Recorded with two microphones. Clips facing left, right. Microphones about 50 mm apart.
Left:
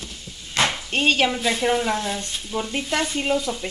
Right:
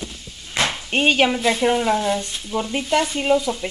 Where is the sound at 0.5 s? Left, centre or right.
Centre.